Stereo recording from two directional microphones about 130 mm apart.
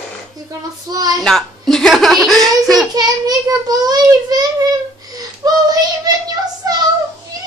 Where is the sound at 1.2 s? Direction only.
Centre (ahead or behind).